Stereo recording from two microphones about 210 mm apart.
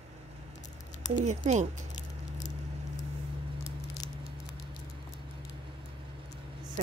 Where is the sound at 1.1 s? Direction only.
35° right (ahead or behind).